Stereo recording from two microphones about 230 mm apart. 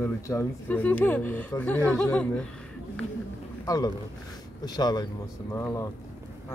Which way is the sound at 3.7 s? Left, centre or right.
Centre.